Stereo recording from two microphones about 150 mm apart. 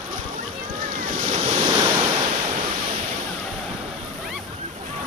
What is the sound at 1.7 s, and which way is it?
Waves, 30° right (ahead or behind).